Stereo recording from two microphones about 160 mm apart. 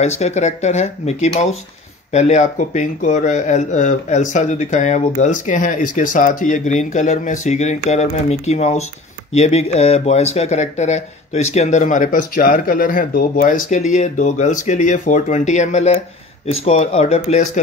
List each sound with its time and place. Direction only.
0.0 s speech: 45° left (ahead or behind)